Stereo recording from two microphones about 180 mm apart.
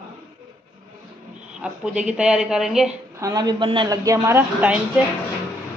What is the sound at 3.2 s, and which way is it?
A woman's voice, 20° right (ahead or behind).